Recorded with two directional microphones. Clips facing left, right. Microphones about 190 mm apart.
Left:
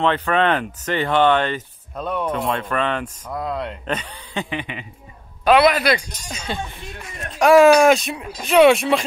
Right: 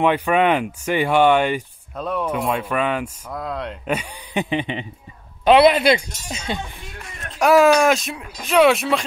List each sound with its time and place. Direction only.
0.0 s speech: 10° right (ahead or behind)
3.9 s speech: 15° right (ahead or behind)
7.3 s speech: centre (ahead or behind)